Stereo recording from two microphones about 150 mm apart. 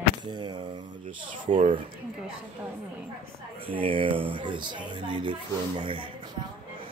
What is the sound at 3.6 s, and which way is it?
Speech, 35° right (ahead or behind).